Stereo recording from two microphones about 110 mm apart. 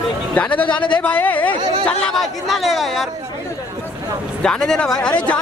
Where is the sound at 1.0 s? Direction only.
15° left (ahead or behind).